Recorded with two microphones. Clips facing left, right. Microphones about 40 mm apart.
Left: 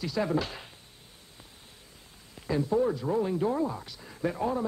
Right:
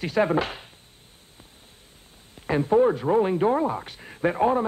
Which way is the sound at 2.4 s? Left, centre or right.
Right.